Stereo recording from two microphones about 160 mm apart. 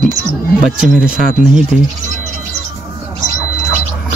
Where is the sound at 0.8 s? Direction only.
5° right (ahead or behind).